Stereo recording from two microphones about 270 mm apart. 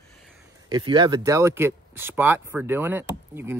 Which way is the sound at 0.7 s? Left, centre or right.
Centre.